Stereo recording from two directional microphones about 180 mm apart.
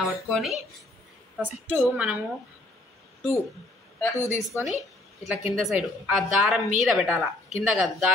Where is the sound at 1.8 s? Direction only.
5° right (ahead or behind).